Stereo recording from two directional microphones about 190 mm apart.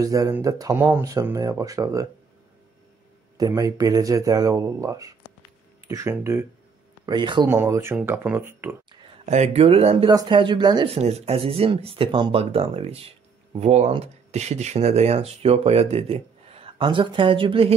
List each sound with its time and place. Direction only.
0.0 s speech: 20° right (ahead or behind)
3.3 s speech: 20° right (ahead or behind)
9.2 s speech: 35° right (ahead or behind)
11.0 s speech: 35° right (ahead or behind)